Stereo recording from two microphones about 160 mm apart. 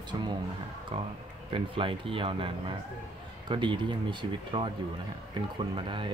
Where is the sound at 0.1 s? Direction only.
30° right (ahead or behind).